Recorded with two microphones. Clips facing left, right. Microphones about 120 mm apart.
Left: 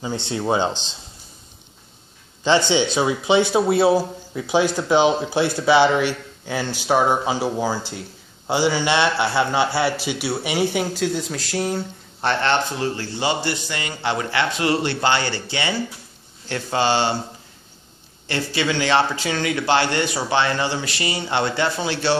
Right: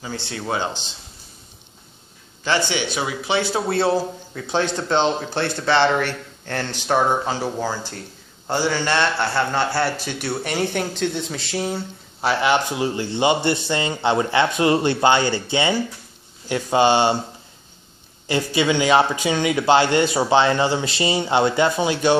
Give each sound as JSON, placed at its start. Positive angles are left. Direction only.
{"t": 0.0, "sound": "speech", "side_deg": 20}
{"t": 2.7, "sound": "speech", "side_deg": 20}
{"t": 18.2, "sound": "speech", "side_deg": -20}